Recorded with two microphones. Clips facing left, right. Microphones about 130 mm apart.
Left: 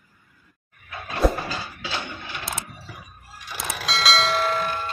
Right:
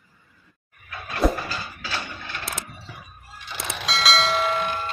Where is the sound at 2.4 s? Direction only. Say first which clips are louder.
Left 1 dB; centre (ahead or behind).